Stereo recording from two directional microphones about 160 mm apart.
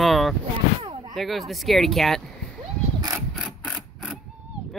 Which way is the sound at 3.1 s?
Centre (ahead or behind).